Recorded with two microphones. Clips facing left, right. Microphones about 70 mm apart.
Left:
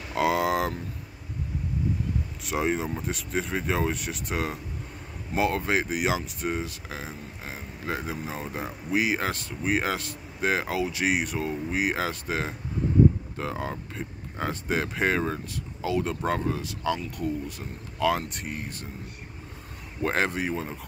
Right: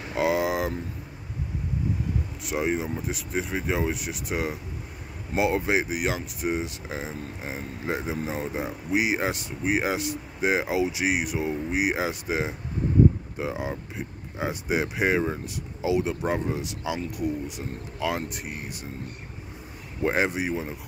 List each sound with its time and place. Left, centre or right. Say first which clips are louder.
0.1 s a sound: even; centre
2.4 s speech: even; centre
5.9 s speech: left 1 dB; centre
6.4 s speech: right 2 dB; centre
20.0 s speech: right 2 dB; centre